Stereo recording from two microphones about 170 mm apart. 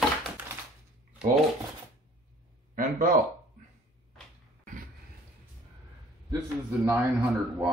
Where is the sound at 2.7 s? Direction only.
50° right (ahead or behind).